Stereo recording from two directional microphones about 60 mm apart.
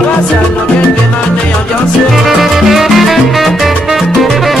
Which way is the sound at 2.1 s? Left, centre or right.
Centre.